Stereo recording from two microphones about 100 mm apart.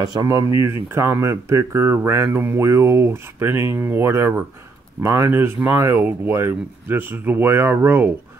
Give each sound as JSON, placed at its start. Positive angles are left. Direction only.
{"t": 0.0, "sound": "speech", "side_deg": -40}